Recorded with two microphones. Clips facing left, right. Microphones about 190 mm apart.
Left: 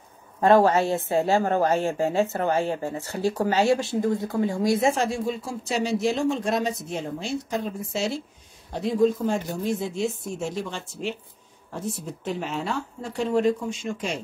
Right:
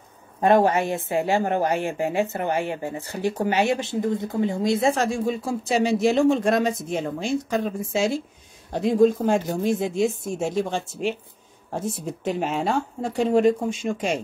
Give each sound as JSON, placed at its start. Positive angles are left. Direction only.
{"t": 0.4, "sound": "a woman's voice", "side_deg": -15}
{"t": 5.1, "sound": "speech", "side_deg": -55}
{"t": 8.7, "sound": "speech", "side_deg": -50}